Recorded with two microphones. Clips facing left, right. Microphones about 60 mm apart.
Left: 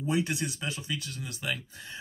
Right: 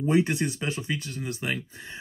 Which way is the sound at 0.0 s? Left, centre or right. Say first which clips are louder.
Right 6 dB; right.